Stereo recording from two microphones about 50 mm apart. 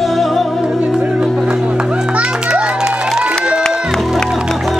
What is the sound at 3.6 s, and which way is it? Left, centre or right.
Music, centre.